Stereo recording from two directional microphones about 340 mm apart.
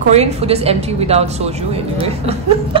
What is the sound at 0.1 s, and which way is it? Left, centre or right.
A woman's voice, centre.